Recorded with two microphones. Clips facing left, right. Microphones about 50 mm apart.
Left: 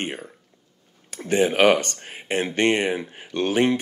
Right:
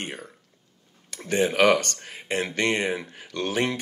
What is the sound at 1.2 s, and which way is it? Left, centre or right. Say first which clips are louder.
Speech: left 2 dB; left.